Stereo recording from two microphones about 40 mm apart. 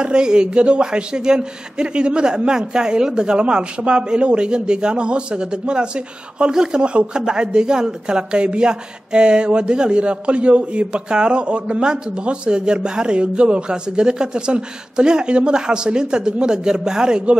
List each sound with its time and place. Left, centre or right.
0.0 s a man's voice: right